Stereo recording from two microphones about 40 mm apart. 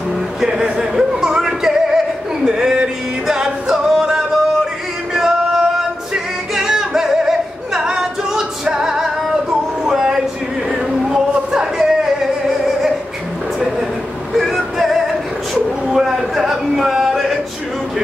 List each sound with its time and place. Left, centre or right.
0.4 s speech: centre
0.7 s music: centre
9.8 s a sound: centre
14.3 s male singing: centre
15.9 s a sound: centre
17.0 s male singing: centre